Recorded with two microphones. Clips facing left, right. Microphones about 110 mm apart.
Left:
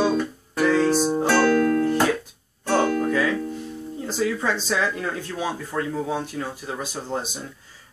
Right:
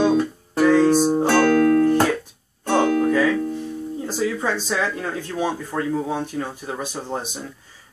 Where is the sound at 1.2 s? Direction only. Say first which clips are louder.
Right 2 dB; 55° right (ahead or behind).